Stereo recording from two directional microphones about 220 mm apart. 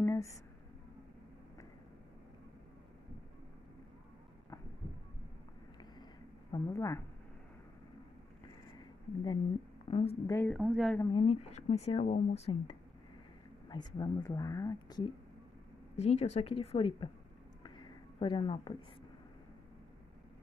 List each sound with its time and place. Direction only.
0.0 s a sound: 10° left (ahead or behind)
6.5 s speech: 15° left (ahead or behind)
9.8 s a woman's voice: 25° left (ahead or behind)
10.2 s a woman's voice: 10° left (ahead or behind)
11.0 s speech: 20° left (ahead or behind)
16.0 s speech: 30° left (ahead or behind)
17.6 s a sound: 20° left (ahead or behind)